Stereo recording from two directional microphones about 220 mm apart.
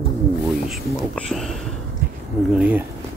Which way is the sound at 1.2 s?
Centre (ahead or behind).